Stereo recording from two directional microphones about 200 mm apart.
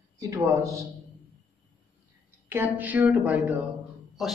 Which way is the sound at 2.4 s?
10° right (ahead or behind).